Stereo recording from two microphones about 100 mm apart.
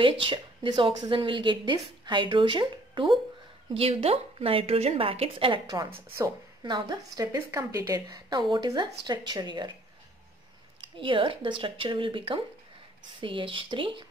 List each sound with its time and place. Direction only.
0.0 s a woman's voice: 55° right (ahead or behind)
3.7 s a woman's voice: 75° right (ahead or behind)
6.0 s a woman's voice: 25° right (ahead or behind)
6.6 s a woman's voice: 45° right (ahead or behind)
7.3 s a woman's voice: 30° right (ahead or behind); by 9.7 s 45° right (ahead or behind)
11.0 s a woman's voice: 60° right (ahead or behind)